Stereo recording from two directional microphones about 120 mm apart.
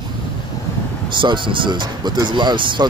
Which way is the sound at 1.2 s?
45° right (ahead or behind).